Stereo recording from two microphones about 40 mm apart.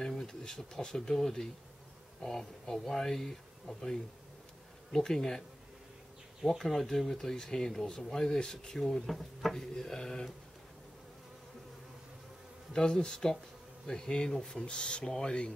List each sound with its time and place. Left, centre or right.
0.3 s speech: centre
6.6 s speech: centre
9.0 s speech: centre
9.6 s speech: centre
12.7 s speech: centre